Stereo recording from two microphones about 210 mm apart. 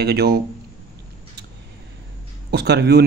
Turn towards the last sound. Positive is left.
turn(degrees=-50)  # may be behind; listen again after turning